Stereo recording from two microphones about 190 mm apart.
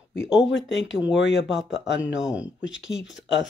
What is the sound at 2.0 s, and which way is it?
Speech, 5° right (ahead or behind).